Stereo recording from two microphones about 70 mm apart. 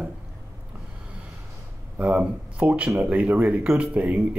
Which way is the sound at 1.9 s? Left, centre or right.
Right.